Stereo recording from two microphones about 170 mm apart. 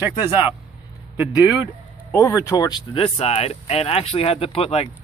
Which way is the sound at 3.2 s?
35° left (ahead or behind).